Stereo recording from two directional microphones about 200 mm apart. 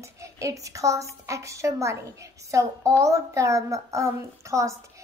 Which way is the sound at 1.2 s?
15° right (ahead or behind).